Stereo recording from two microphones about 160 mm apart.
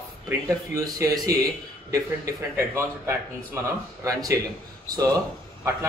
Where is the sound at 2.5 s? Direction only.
15° right (ahead or behind).